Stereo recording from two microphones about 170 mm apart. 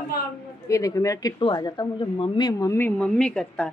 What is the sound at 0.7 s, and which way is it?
Speech, 20° left (ahead or behind).